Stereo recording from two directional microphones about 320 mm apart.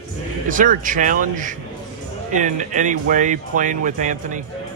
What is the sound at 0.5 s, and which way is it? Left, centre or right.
Speech, right.